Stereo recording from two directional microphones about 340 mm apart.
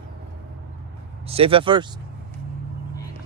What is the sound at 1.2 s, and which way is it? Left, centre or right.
Speech, centre.